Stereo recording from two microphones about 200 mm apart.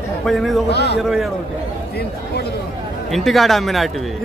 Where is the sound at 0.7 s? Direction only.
55° left (ahead or behind).